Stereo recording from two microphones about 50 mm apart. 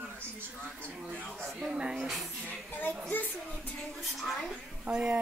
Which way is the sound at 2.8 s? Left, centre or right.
Left.